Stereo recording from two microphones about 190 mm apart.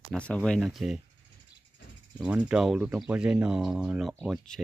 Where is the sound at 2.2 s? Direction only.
5° right (ahead or behind).